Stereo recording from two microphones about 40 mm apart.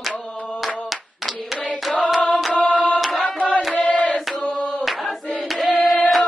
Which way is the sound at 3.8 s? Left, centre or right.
Left.